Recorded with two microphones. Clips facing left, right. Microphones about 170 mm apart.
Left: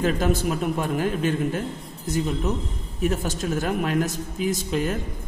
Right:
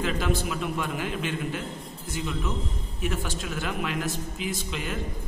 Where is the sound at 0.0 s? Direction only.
45° left (ahead or behind).